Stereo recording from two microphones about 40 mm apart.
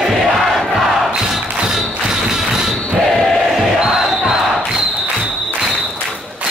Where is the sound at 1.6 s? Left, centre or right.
Centre.